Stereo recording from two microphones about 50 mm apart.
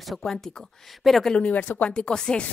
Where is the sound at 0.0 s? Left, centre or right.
Centre.